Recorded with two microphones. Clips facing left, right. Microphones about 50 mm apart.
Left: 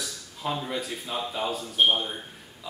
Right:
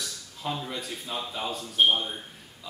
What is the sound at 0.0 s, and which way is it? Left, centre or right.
Speech, centre.